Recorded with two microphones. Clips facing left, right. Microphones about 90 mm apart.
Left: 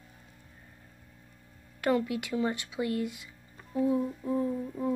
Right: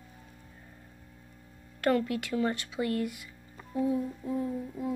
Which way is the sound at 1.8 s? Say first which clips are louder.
Right 1 dB; 15° left (ahead or behind).